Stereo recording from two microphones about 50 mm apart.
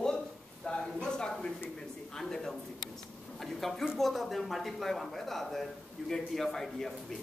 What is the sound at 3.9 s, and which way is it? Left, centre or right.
Speech, centre.